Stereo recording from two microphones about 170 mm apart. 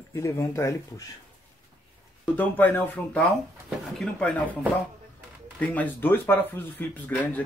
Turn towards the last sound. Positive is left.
turn(degrees=10)  # may be behind; listen again after turning